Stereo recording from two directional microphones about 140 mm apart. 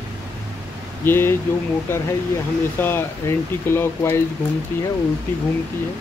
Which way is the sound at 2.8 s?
15° left (ahead or behind).